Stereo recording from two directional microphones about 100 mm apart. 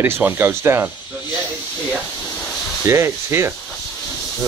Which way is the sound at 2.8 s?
25° right (ahead or behind).